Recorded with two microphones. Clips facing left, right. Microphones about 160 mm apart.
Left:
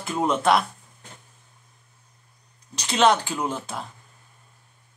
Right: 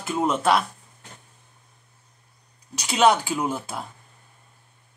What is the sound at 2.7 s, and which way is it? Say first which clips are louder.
Speech: right 1 dB; 10° right (ahead or behind).